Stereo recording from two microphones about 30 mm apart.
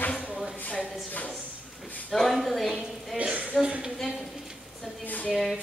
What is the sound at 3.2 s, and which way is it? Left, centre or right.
Speech, right.